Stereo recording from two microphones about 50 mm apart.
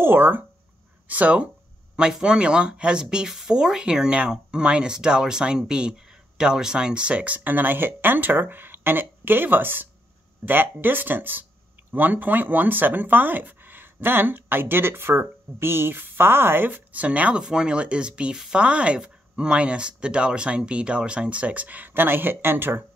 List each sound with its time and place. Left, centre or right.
0.0 s speech: right
1.0 s speech: right
2.0 s speech: centre
17.4 s speech: centre; by 22.8 s right